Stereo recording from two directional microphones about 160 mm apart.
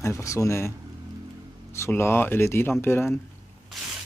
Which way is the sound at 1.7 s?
15° left (ahead or behind).